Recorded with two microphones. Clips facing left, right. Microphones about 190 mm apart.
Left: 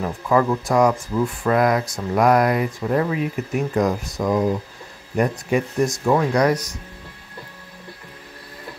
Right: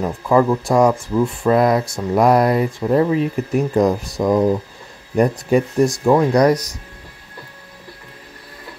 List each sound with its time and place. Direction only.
0.0 s speech: 20° right (ahead or behind); by 6.7 s 35° right (ahead or behind)